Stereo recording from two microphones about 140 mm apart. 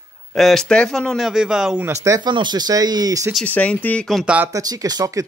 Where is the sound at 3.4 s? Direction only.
10° left (ahead or behind).